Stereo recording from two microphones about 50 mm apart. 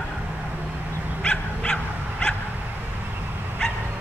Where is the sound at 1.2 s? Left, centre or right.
Left.